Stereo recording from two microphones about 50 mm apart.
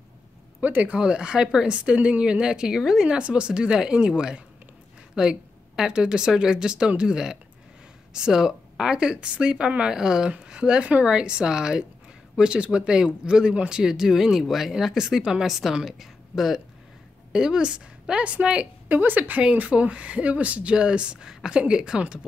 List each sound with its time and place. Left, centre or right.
0.6 s speech: right
0.9 s speech: right
3.1 s speech: centre
17.3 s speech: centre
18.9 s speech: right; by 22.0 s centre